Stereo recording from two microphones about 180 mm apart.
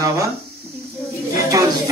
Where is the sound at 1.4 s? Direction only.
20° right (ahead or behind).